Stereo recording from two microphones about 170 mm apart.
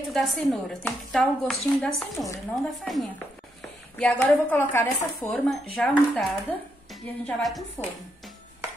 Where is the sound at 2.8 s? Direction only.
Centre (ahead or behind).